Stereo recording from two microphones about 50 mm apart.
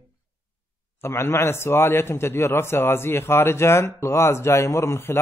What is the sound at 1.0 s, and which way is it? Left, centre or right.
A man's voice, left.